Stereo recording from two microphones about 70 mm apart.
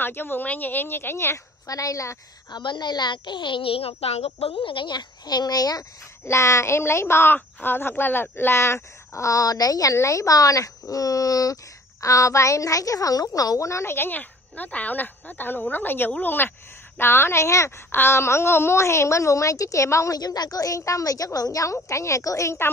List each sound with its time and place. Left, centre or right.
0.0 s speech: left
1.7 s speech: left
2.5 s a woman's voice: left
4.8 s speech: left
6.2 s speech: left
13.9 s speech: left
20.2 s a woman's voice: left